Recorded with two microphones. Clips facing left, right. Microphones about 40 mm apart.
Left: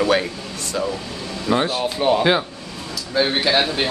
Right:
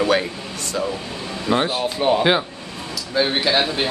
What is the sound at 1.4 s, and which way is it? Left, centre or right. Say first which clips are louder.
Speech: even; centre.